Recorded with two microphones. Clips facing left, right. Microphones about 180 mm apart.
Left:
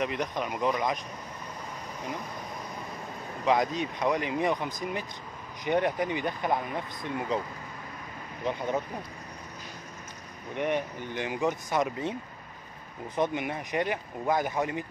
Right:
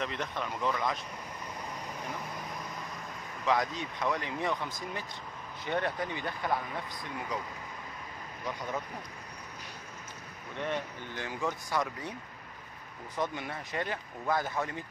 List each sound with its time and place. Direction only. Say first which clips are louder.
0.0 s speech: left 5 dB; 15° left (ahead or behind)
3.4 s speech: left 4 dB; 20° left (ahead or behind)
8.5 s speech: left 7 dB; 20° left (ahead or behind)
10.5 s speech: left 6 dB; 15° left (ahead or behind)